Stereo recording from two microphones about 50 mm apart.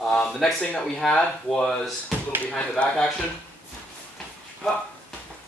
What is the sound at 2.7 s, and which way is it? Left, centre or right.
Speech, left.